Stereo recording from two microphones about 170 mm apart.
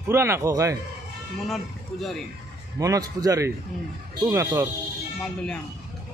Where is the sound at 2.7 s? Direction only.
20° right (ahead or behind).